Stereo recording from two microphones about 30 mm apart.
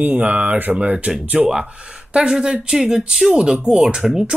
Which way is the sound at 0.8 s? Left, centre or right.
Right.